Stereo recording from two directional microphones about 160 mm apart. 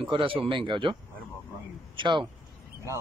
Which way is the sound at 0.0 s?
30° right (ahead or behind).